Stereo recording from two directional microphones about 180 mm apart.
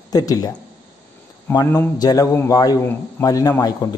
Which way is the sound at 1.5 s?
15° left (ahead or behind).